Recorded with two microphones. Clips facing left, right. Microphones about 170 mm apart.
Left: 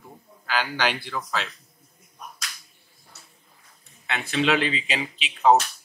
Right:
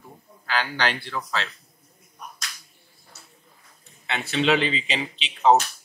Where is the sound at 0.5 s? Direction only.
5° left (ahead or behind).